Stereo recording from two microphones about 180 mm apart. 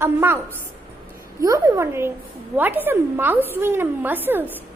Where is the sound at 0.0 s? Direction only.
15° right (ahead or behind).